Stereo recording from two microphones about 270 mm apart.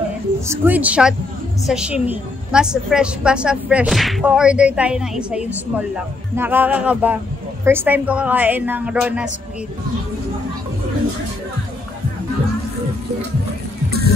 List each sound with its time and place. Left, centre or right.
0.5 s a woman's voice: centre